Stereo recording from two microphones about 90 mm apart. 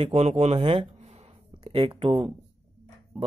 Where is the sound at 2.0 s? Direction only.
90° right.